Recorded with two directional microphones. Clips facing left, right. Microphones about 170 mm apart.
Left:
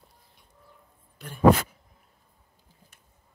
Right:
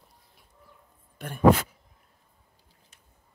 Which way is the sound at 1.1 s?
55° right (ahead or behind).